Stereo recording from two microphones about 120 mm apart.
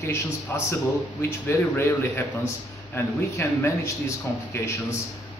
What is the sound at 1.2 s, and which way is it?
A man's voice, 20° left (ahead or behind).